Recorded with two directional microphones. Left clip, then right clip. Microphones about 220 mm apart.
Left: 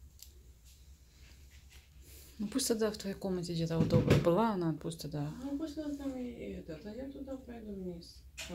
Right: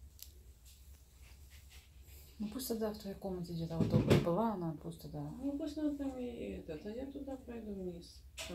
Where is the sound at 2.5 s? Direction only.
50° left (ahead or behind).